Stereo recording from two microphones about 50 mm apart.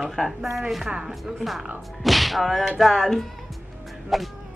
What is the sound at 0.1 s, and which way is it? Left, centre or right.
Speech, centre.